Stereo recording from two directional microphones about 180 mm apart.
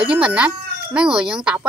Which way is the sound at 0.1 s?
5° right (ahead or behind).